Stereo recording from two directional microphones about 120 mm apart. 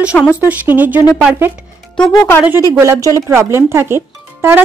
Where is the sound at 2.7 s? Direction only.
20° right (ahead or behind).